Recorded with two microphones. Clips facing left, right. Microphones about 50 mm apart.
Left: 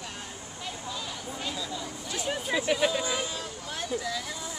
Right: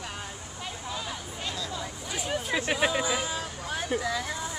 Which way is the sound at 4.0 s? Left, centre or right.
Right.